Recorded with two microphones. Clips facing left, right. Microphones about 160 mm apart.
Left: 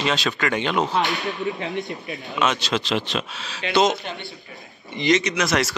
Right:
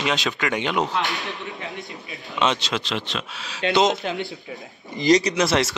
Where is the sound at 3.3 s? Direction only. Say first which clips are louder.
Right 2 dB; 10° right (ahead or behind).